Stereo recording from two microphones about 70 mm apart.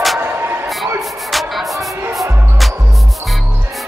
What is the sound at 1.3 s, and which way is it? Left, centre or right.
Music, centre.